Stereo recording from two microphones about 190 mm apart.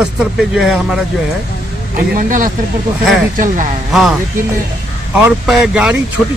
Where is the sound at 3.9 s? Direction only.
Centre (ahead or behind).